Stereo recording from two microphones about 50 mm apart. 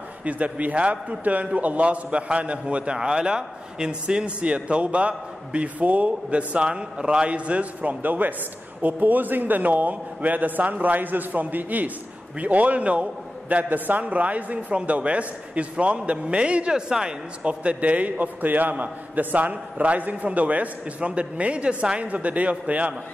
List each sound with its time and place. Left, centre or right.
0.2 s a man's voice: right